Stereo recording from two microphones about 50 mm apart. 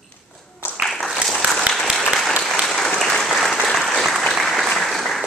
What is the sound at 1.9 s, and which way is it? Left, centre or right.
Applause, centre.